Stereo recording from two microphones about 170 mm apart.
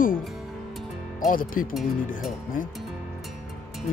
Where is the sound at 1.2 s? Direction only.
55° left (ahead or behind).